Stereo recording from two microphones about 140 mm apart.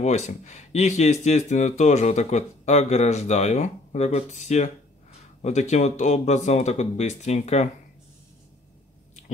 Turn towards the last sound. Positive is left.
turn(degrees=50)  # may be behind; listen again after turning